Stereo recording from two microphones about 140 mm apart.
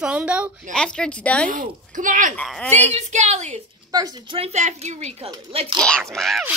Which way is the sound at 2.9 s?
55° right (ahead or behind).